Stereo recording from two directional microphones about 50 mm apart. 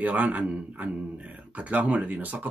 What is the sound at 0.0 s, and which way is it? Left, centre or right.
Speech, right.